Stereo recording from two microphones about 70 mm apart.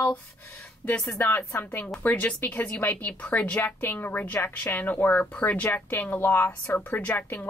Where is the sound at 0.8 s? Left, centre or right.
Left.